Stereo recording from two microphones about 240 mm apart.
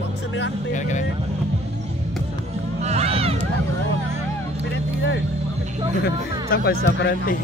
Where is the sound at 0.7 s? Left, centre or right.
Left.